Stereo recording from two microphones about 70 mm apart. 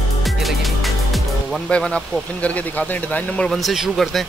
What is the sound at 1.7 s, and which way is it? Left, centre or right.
Speech, centre.